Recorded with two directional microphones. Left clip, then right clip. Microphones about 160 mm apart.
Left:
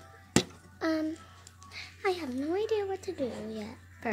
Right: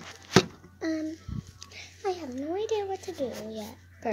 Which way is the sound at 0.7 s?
30° left (ahead or behind).